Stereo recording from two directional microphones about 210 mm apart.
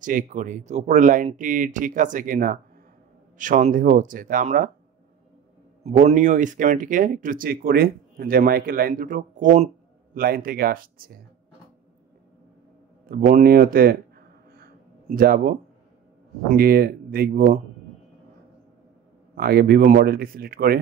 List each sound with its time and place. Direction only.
0.0 s speech: 40° right (ahead or behind)
5.9 s speech: 35° right (ahead or behind)
13.1 s a sound: 45° right (ahead or behind)
16.4 s speech: 45° right (ahead or behind)
19.3 s speech: 45° right (ahead or behind)